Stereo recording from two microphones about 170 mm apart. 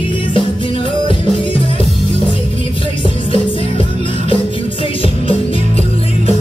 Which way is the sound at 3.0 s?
30° left (ahead or behind).